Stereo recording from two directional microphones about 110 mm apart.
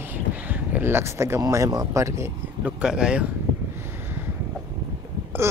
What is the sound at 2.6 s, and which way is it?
Speech, 10° right (ahead or behind).